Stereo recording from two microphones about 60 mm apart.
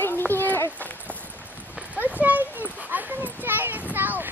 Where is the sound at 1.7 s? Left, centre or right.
Right.